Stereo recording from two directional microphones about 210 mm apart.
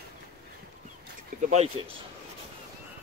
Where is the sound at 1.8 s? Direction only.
25° right (ahead or behind).